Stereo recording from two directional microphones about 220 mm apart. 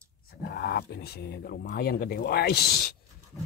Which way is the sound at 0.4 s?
50° left (ahead or behind).